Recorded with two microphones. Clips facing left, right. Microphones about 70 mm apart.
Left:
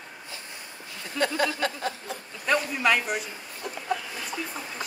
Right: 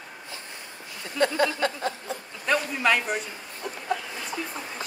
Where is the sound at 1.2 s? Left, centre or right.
Right.